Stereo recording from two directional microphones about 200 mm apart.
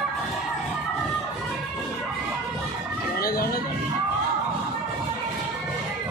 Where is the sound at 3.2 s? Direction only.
50° left (ahead or behind).